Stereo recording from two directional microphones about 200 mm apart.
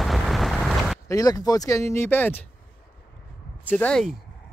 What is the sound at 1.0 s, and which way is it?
Speech, 15° left (ahead or behind).